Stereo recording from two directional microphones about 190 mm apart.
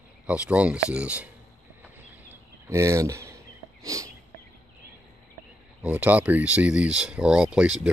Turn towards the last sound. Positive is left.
turn(degrees=-5)  # may be behind; listen again after turning